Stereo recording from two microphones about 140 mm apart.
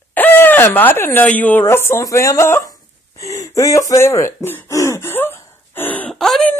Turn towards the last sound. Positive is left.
turn(degrees=5)  # may be behind; listen again after turning